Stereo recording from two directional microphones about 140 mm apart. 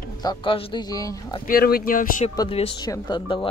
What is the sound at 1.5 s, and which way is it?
Speech, 90° left.